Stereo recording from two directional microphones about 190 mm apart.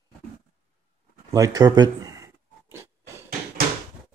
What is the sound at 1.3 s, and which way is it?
Speech, 20° right (ahead or behind).